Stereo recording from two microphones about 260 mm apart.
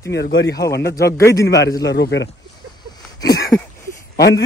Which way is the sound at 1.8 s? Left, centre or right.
Left.